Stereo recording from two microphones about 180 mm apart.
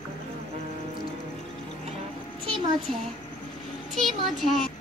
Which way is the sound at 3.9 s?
Centre (ahead or behind).